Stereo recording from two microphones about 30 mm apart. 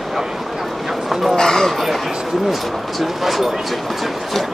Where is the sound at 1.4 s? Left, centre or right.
Left.